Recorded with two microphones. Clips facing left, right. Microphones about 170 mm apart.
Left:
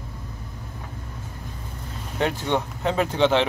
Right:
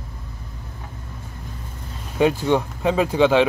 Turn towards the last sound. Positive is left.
turn(degrees=-10)  # may be behind; listen again after turning